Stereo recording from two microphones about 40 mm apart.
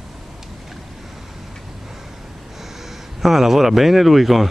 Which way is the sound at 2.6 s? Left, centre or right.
Centre.